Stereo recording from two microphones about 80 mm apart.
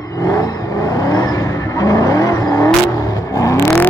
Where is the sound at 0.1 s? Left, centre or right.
Left.